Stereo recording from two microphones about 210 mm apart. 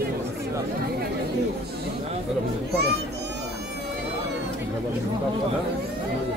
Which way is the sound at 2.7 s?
50° right (ahead or behind).